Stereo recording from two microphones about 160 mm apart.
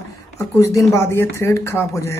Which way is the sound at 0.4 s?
20° left (ahead or behind).